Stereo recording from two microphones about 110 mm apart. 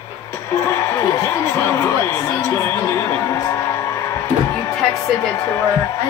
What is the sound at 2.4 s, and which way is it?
Music, 25° left (ahead or behind).